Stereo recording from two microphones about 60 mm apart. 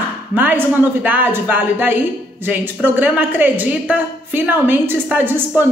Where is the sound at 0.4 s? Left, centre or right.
Right.